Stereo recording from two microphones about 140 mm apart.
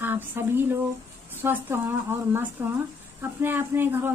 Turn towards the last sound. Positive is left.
turn(degrees=-15)  # may be behind; listen again after turning